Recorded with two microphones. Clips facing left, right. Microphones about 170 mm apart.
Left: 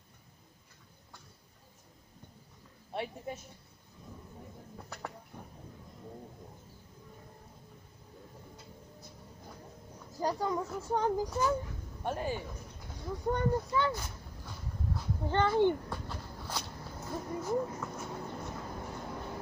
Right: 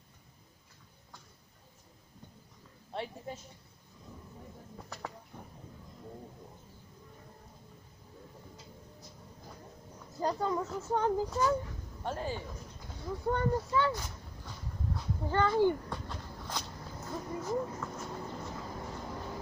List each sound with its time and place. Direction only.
2.9 s a woman's voice: 15° left (ahead or behind)
10.1 s speech: 10° left (ahead or behind)
13.9 s vehicle: 5° left (ahead or behind)
15.2 s speech: 25° left (ahead or behind)
15.9 s a sound: 5° left (ahead or behind)
18.3 s vehicle: 10° left (ahead or behind)